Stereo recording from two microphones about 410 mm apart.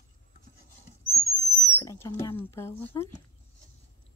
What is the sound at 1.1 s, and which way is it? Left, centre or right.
Owl, centre.